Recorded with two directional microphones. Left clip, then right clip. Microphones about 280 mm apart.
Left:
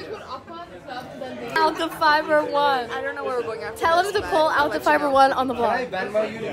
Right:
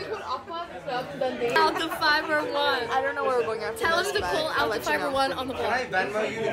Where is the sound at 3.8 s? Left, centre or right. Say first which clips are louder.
Left 6 dB; left.